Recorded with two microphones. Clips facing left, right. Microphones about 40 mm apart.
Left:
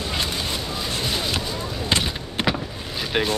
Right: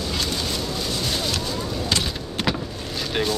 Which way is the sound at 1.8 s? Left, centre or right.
Left.